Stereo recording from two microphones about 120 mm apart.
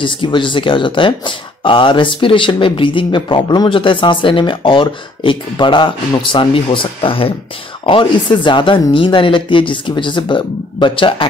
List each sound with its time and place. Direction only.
0.0 s speech: 45° left (ahead or behind)